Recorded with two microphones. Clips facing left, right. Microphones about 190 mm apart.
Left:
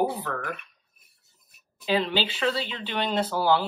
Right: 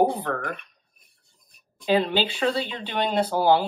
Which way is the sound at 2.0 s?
50° right (ahead or behind).